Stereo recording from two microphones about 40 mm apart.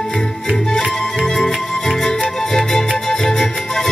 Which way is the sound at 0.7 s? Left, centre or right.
Centre.